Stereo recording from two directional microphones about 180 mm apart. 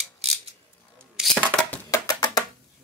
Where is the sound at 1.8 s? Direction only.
20° left (ahead or behind).